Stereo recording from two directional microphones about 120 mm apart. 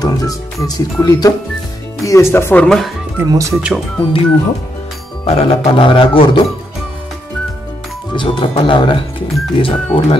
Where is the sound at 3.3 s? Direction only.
25° right (ahead or behind).